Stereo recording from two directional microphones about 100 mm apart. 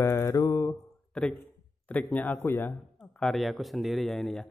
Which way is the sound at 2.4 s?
25° left (ahead or behind).